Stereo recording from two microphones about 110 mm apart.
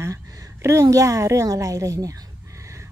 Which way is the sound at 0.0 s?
25° right (ahead or behind).